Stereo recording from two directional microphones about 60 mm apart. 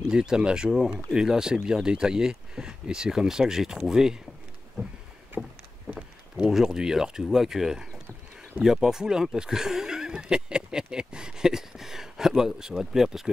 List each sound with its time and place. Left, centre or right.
0.1 s speech: centre
4.8 s boat: right
6.4 s speech: centre